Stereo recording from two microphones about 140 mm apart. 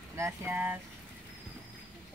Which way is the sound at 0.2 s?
15° right (ahead or behind).